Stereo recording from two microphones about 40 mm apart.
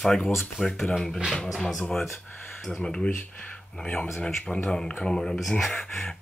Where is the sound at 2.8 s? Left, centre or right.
Left.